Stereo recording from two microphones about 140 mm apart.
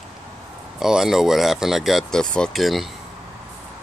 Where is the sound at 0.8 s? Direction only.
5° right (ahead or behind).